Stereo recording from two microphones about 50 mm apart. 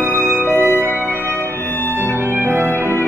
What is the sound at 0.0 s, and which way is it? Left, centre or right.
Music, right.